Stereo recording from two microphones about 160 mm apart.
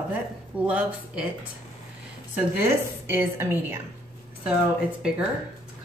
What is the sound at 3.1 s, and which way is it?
Speech, 10° right (ahead or behind).